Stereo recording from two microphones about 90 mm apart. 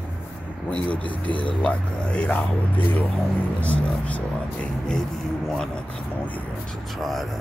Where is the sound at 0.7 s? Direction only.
15° left (ahead or behind).